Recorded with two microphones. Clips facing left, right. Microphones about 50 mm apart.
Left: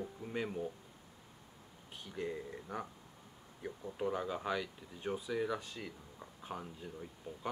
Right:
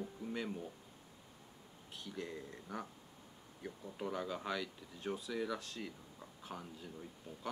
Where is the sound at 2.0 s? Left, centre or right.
Centre.